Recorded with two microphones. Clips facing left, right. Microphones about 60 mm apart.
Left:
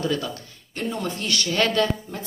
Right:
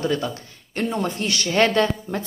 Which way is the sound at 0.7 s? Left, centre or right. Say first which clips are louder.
Right 4 dB; right.